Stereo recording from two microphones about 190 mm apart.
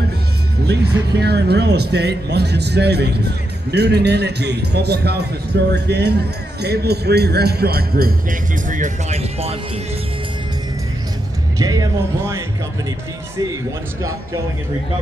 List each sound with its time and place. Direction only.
0.7 s speech: 60° right (ahead or behind); by 9.6 s 35° right (ahead or behind)
11.5 s speech: 20° right (ahead or behind)